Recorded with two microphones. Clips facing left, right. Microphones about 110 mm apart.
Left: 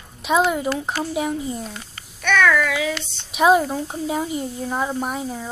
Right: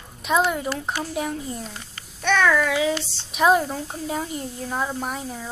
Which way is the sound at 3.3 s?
5° left (ahead or behind).